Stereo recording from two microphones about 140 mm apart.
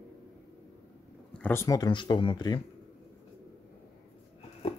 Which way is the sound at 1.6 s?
25° left (ahead or behind).